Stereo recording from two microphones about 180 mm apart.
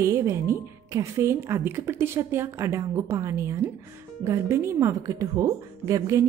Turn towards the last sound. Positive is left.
turn(degrees=-15)  # may be behind; listen again after turning